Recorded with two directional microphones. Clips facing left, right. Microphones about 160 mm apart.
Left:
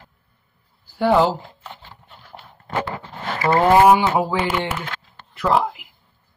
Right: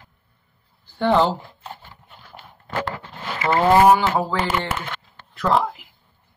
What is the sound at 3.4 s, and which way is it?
Speech, 30° left (ahead or behind).